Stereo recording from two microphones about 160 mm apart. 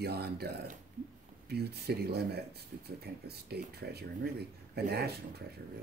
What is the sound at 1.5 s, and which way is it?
Speech, 90° right.